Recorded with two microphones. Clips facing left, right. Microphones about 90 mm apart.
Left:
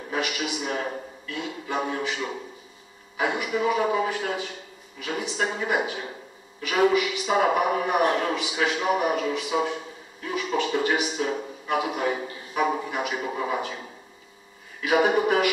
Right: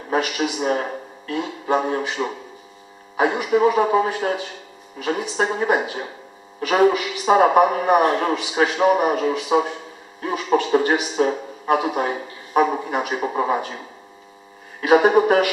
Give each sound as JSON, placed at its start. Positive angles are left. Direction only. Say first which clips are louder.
{"t": 0.1, "sound": "a man's voice", "louder": "right 7 dB", "side_deg": -40}
{"t": 3.3, "sound": "a man's voice", "louder": "right 6 dB", "side_deg": -30}
{"t": 15.0, "sound": "a man's voice", "louder": "right 4 dB", "side_deg": -35}